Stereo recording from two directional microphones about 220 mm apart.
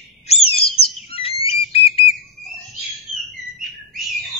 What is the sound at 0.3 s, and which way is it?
Chirp, 25° left (ahead or behind).